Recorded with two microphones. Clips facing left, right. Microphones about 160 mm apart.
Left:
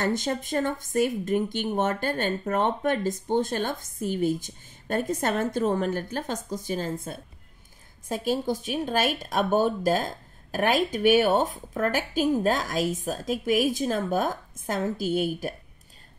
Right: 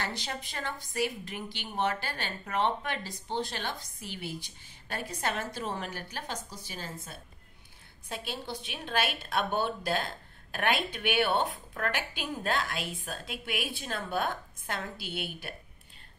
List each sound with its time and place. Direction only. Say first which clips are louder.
0.0 s a woman's voice: left 10 dB; 45° left (ahead or behind)